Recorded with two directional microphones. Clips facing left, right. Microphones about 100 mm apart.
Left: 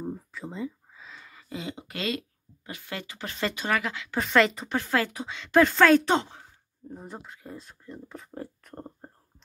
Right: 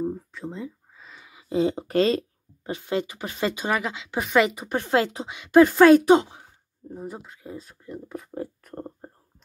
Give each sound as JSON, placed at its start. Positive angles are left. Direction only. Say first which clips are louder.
{"t": 0.0, "sound": "a sound", "louder": "right 6 dB", "side_deg": 0}
{"t": 1.5, "sound": "speech", "louder": "right 14 dB", "side_deg": -35}
{"t": 2.8, "sound": "speech", "louder": "right 10 dB", "side_deg": -20}
{"t": 4.7, "sound": "speech", "louder": "right 5 dB", "side_deg": -25}